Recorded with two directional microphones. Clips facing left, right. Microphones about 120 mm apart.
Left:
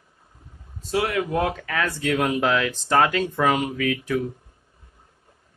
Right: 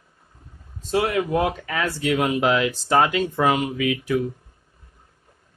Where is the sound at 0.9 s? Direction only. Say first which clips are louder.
Right 2 dB; 25° right (ahead or behind).